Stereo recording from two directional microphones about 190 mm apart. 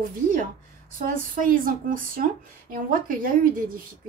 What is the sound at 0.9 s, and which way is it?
A woman's voice, 45° right (ahead or behind).